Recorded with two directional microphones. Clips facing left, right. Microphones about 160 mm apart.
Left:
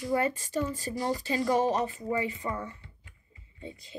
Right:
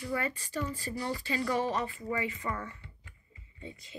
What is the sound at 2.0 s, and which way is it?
Speech, 30° left (ahead or behind).